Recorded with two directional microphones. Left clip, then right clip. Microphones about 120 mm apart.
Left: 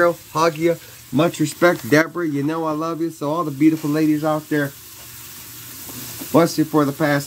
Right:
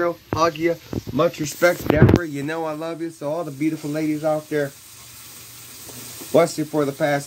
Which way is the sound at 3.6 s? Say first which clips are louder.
Left 9 dB; 5° left (ahead or behind).